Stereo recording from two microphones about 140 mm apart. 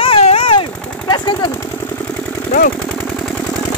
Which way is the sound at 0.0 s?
45° left (ahead or behind).